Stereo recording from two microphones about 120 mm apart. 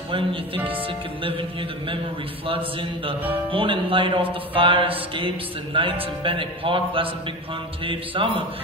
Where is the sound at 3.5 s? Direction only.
45° right (ahead or behind).